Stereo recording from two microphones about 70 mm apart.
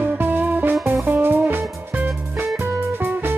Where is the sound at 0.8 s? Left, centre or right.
Right.